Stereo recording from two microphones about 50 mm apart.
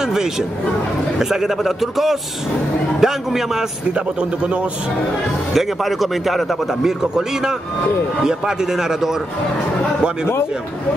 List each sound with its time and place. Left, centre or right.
0.0 s a man's voice: centre
3.9 s a man's voice: right
5.5 s a man's voice: centre